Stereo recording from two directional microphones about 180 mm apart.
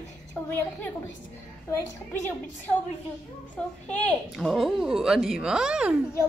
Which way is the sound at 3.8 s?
5° left (ahead or behind).